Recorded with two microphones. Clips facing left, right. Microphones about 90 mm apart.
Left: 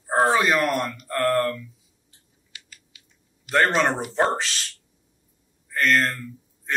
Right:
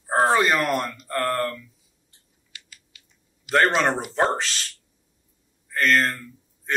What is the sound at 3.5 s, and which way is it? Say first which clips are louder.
Speech: right 1 dB; centre (ahead or behind).